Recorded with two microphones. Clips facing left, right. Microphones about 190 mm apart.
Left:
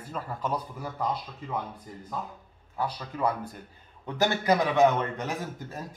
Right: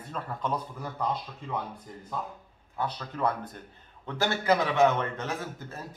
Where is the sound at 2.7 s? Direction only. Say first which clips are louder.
Left 1 dB; 10° left (ahead or behind).